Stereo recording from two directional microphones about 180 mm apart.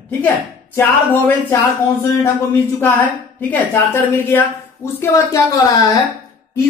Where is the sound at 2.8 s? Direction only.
15° left (ahead or behind).